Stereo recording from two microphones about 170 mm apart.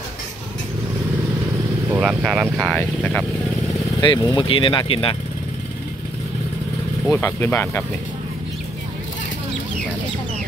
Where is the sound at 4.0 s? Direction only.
25° left (ahead or behind).